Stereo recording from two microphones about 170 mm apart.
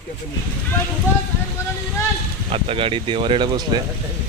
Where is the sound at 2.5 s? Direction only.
30° right (ahead or behind).